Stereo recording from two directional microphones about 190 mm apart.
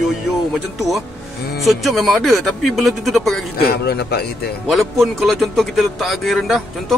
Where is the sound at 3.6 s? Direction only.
60° left (ahead or behind).